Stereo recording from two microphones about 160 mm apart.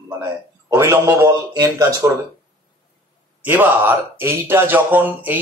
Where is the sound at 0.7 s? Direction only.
20° right (ahead or behind).